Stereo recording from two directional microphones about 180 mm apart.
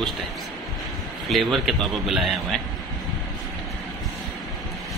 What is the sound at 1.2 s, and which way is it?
Speech, centre (ahead or behind).